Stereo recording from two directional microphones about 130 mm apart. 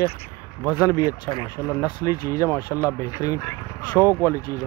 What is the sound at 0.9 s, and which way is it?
Speech, 25° left (ahead or behind).